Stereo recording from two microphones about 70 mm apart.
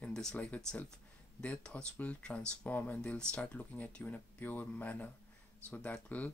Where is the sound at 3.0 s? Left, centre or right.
Centre.